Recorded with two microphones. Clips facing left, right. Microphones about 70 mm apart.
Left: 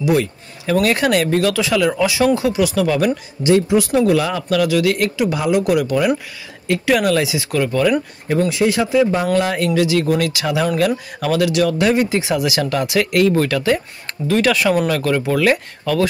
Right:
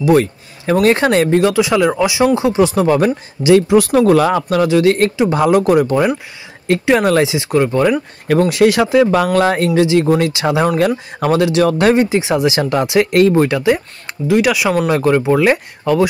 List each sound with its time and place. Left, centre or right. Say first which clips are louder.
0.0 s speech: right 5 dB; right
3.4 s speech: right 4 dB; right
5.3 s speech: right 6 dB; right
8.3 s speech: right 5 dB; right
9.3 s speech: right 4 dB; right
9.8 s speech: right 4 dB; right
12.1 s speech: right 4 dB; right
13.1 s speech: right 3 dB; right
13.4 s speech: right 4 dB; right
14.9 s speech: right 5 dB; right